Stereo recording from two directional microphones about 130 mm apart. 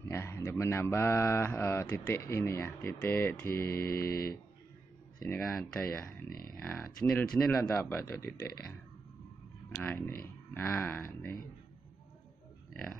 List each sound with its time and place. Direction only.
0.1 s speech: 20° left (ahead or behind)
5.4 s speech: 5° left (ahead or behind); by 8.7 s 20° left (ahead or behind)
9.8 s speech: 15° left (ahead or behind)